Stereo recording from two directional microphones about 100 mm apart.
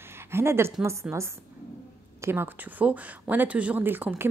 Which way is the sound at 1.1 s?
10° right (ahead or behind).